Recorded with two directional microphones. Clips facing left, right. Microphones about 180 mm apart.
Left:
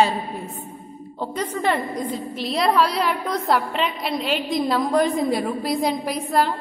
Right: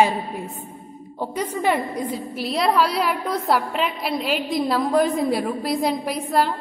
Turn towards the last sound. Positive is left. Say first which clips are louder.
# even
turn(degrees=0)  # may be behind; listen again after turning